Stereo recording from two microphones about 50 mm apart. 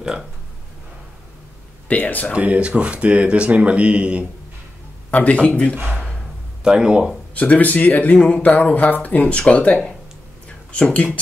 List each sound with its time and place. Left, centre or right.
1.9 s speech: left
2.3 s speech: right
5.1 s a man's voice: left
6.6 s speech: centre
7.3 s speech: left